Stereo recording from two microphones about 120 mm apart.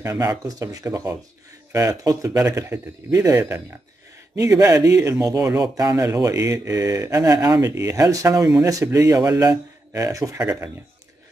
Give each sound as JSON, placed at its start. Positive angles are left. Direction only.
{"t": 0.0, "sound": "speech", "side_deg": -30}